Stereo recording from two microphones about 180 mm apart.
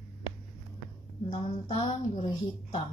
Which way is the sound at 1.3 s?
25° left (ahead or behind).